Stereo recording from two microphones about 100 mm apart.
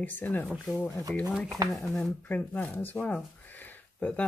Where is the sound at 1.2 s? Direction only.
5° right (ahead or behind).